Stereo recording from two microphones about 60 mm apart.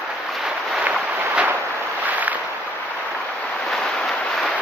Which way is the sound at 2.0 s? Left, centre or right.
Right.